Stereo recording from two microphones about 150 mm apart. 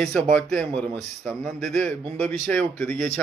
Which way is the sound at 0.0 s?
5° left (ahead or behind).